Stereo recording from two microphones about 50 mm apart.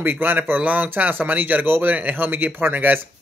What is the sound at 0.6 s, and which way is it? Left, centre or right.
Speech, right.